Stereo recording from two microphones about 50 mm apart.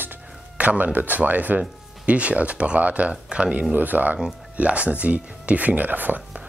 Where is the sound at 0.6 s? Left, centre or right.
Right.